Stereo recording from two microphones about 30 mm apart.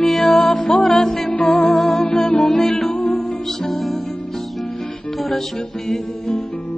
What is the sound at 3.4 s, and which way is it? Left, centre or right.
Music, centre.